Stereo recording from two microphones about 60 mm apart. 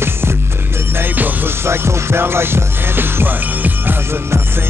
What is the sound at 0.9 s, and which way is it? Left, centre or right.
Music, right.